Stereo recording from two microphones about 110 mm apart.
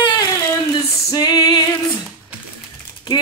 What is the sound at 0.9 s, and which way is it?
Female singing, 35° left (ahead or behind).